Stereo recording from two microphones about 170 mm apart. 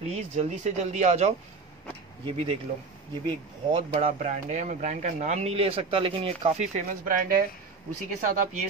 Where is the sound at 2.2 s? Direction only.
30° right (ahead or behind).